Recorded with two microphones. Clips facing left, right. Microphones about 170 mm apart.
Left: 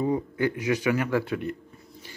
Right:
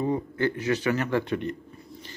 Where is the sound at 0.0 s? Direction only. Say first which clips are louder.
Left 1 dB; 10° left (ahead or behind).